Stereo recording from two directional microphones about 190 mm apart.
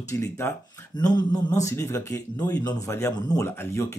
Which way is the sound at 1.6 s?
15° left (ahead or behind).